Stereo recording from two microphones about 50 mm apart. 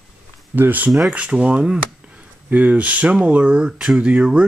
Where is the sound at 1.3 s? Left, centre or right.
Centre.